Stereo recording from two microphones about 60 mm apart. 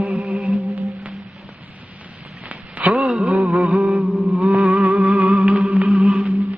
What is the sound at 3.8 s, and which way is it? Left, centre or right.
Mantra, centre.